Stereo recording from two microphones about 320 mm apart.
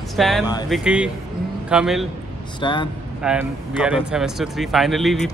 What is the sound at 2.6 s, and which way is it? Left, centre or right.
Speech, centre.